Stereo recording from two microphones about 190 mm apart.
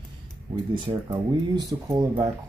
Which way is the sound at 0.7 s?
25° right (ahead or behind).